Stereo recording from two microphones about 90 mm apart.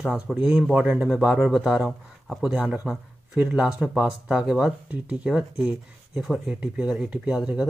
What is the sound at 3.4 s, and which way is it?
Speech, 10° right (ahead or behind).